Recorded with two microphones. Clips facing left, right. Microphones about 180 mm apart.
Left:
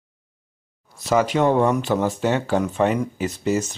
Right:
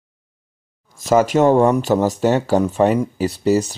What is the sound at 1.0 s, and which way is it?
Speech, 45° right (ahead or behind).